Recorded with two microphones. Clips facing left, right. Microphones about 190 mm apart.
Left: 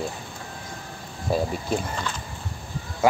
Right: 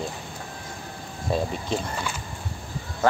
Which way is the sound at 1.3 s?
5° left (ahead or behind).